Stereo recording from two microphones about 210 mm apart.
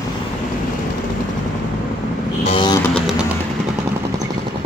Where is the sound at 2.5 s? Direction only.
20° left (ahead or behind).